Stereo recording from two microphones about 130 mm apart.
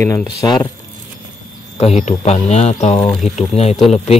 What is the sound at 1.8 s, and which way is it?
Speech, 60° left (ahead or behind).